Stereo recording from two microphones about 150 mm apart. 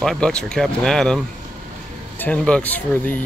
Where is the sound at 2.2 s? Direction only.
10° left (ahead or behind).